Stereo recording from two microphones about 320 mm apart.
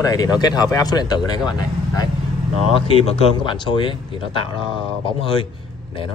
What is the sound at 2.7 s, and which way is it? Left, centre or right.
Speech, centre.